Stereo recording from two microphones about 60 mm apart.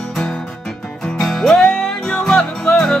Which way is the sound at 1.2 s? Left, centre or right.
Centre.